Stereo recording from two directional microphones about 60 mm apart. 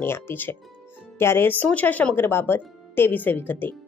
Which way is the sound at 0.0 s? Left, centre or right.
Left.